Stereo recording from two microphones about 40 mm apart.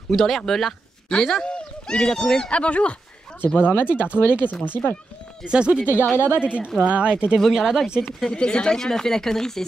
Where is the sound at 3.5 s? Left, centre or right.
Left.